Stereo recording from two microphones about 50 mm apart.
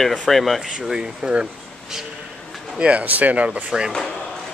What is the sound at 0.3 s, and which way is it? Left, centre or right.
Speech, centre.